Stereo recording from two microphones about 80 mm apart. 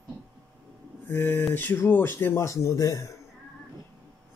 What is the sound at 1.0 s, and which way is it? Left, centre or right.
Speech, left.